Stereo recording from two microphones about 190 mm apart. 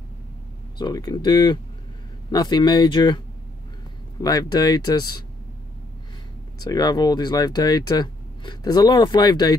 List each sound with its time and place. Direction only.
0.7 s speech: 20° left (ahead or behind)
4.2 s speech: 20° left (ahead or behind)
6.6 s speech: 20° left (ahead or behind)